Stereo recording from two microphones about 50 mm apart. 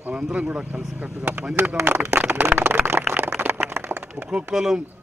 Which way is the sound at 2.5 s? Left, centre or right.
Right.